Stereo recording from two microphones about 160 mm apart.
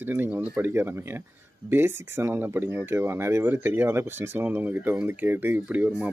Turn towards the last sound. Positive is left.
turn(degrees=-10)  # may be behind; listen again after turning